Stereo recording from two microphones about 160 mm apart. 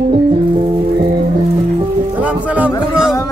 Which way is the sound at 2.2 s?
10° right (ahead or behind).